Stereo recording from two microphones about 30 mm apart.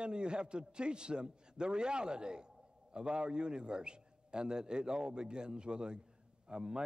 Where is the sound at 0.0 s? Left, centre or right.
Right.